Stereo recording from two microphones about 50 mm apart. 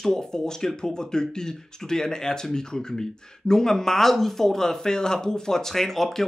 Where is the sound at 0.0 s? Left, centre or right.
Centre.